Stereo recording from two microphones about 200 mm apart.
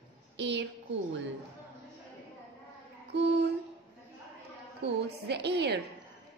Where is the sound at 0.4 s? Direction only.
60° right (ahead or behind).